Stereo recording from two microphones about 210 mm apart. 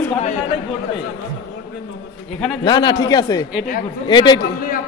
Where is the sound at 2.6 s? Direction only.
20° left (ahead or behind).